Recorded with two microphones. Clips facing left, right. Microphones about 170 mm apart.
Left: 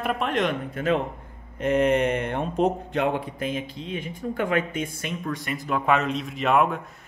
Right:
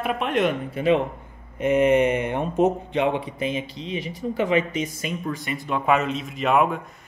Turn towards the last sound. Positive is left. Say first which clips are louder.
# right 1 dB
turn(degrees=0)  # may be behind; listen again after turning